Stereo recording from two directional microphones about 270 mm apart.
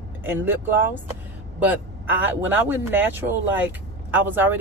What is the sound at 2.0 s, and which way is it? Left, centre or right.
A man's voice, centre.